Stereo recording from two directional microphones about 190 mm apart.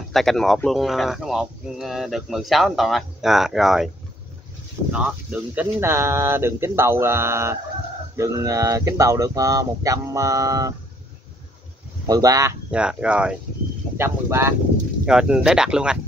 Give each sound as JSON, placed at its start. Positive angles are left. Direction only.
{"t": 0.1, "sound": "speech", "side_deg": 0}
{"t": 4.9, "sound": "speech", "side_deg": -5}
{"t": 12.1, "sound": "speech", "side_deg": -20}
{"t": 12.7, "sound": "speech", "side_deg": -5}